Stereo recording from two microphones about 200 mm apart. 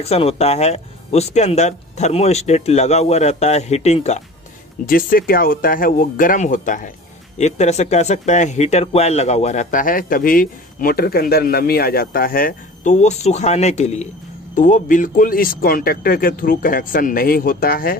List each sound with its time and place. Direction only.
0.0 s speech: 30° left (ahead or behind)
4.8 s speech: 45° left (ahead or behind)